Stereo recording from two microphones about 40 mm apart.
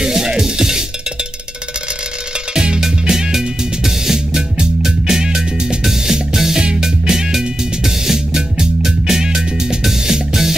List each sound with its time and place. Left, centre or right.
0.0 s music: centre
2.5 s music: right